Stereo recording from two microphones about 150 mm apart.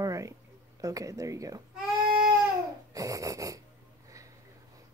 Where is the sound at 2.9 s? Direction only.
20° right (ahead or behind).